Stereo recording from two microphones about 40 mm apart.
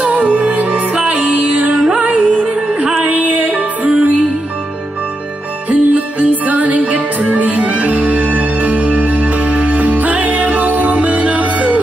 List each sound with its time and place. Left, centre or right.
0.0 s music: right
5.7 s music: right